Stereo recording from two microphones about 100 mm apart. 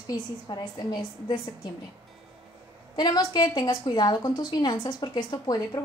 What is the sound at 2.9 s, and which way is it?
A woman's voice, 45° left (ahead or behind).